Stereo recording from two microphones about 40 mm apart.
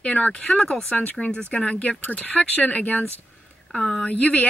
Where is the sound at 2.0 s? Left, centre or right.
Left.